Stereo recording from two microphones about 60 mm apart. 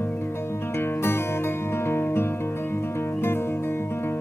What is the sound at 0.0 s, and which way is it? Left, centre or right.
Music, left.